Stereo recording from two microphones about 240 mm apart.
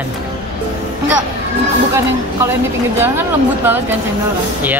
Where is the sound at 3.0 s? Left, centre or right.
Centre.